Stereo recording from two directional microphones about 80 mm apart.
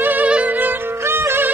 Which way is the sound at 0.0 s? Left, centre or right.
Right.